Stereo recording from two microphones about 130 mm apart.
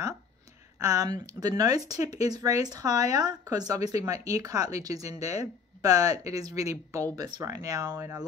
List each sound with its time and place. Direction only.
0.7 s speech: 25° right (ahead or behind)